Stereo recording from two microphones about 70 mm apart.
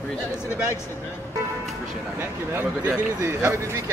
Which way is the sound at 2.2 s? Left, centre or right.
Right.